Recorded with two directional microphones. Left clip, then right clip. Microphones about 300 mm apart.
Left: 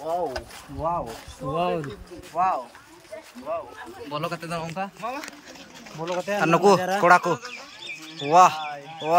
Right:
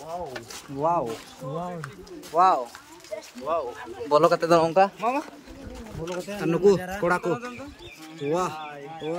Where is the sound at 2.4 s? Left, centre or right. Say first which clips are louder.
Right 4 dB; centre; by 5.2 s right.